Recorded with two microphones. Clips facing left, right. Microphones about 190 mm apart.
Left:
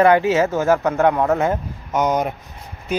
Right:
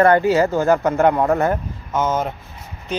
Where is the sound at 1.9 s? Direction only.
15° left (ahead or behind).